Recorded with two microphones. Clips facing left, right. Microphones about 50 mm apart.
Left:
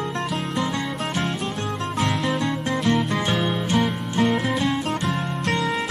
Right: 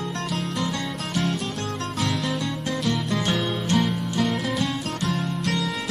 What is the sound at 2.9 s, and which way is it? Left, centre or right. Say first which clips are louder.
Music: left 2 dB; centre.